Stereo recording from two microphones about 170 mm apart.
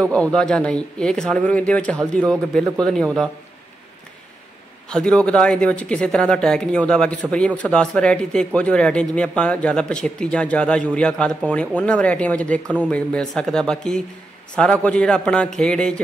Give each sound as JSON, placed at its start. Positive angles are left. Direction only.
{"t": 0.0, "sound": "speech", "side_deg": 5}
{"t": 4.8, "sound": "speech", "side_deg": 5}
{"t": 12.6, "sound": "speech", "side_deg": -10}
{"t": 12.9, "sound": "speech", "side_deg": 5}